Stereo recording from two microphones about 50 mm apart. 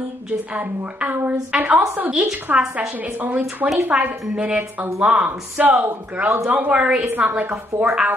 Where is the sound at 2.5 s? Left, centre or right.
Right.